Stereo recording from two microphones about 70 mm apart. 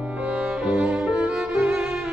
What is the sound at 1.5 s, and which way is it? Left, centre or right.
Music, right.